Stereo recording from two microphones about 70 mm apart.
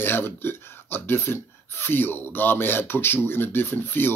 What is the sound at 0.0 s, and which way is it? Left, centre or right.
Speech, left.